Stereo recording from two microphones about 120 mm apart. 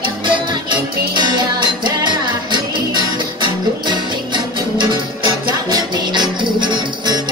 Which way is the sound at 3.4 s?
40° right (ahead or behind).